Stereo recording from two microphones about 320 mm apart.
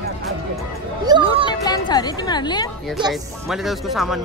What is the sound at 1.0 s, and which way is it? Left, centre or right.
Music, centre.